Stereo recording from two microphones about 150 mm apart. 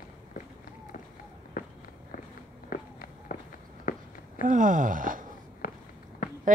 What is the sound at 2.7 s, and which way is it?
Walk, 65° left (ahead or behind).